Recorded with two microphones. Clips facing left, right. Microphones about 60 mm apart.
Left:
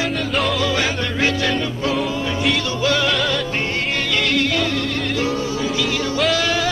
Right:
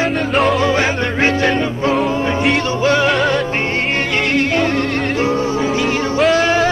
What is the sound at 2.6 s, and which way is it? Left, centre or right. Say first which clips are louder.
Music: right 5 dB; right.